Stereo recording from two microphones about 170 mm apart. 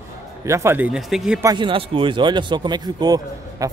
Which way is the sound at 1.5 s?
30° right (ahead or behind).